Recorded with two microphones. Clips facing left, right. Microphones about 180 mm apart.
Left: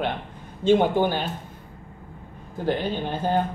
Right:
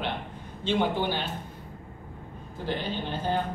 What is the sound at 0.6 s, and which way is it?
Speech, 45° left (ahead or behind).